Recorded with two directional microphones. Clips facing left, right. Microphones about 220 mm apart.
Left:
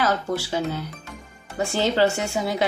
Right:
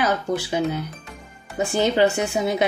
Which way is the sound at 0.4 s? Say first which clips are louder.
Right 3 dB; 15° right (ahead or behind).